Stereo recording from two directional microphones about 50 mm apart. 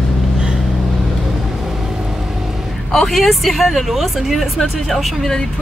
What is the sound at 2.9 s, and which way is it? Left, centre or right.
Speech, centre.